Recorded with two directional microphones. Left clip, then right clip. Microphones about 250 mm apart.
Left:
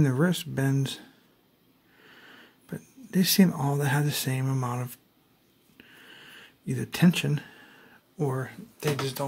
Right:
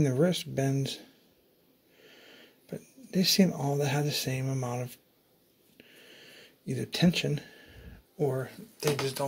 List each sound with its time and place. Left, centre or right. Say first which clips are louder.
0.1 s speech: even; centre
2.0 s speech: left 3 dB; centre
5.8 s a sound: left 3 dB; centre
8.2 s speech: even; centre